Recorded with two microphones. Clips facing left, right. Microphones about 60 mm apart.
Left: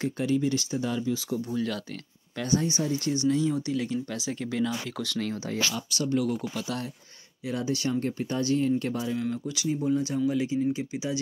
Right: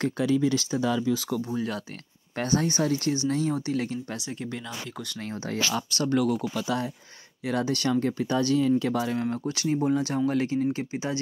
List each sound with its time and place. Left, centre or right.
0.0 s speech: right
1.5 s speech: right
2.3 s speech: right
3.3 s speech: right
4.2 s speech: centre
5.5 s speech: right
6.1 s speech: right
7.4 s speech: right
9.2 s speech: right
9.8 s speech: right